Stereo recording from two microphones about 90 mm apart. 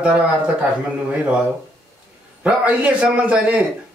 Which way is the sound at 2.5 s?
15° right (ahead or behind).